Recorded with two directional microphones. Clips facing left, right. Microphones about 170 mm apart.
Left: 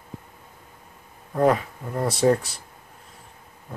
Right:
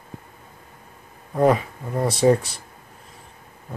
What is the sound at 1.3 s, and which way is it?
Speech, 10° right (ahead or behind).